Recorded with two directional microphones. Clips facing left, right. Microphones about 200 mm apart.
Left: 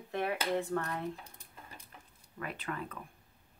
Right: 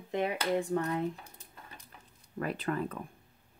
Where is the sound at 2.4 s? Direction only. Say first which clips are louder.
Right 7 dB; 40° right (ahead or behind).